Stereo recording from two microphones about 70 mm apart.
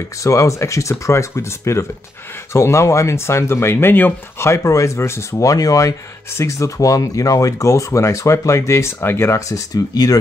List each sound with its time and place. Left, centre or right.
0.2 s speech: left
4.5 s speech: left
5.4 s speech: left
6.3 s speech: left